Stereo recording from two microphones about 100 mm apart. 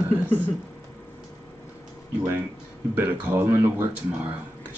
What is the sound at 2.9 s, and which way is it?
Speech, 20° right (ahead or behind).